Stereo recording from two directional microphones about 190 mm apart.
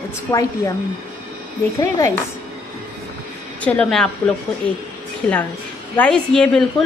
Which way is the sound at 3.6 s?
5° left (ahead or behind).